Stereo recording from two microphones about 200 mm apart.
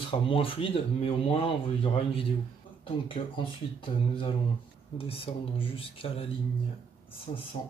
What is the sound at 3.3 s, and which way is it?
Speech, 25° left (ahead or behind).